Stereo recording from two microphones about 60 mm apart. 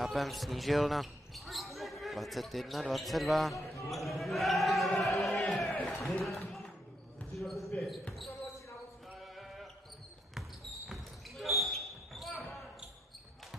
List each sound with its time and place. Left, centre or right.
0.0 s speech: centre
5.2 s crowd: centre
6.2 s music: centre
7.3 s basketball bounce: centre
9.2 s a sound: centre
10.9 s basketball bounce: centre